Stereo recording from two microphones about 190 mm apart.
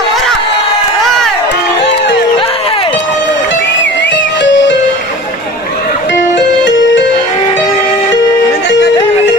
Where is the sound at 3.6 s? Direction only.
70° left (ahead or behind).